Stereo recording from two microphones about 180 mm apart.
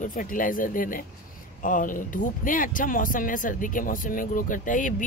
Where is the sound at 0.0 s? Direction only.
50° left (ahead or behind).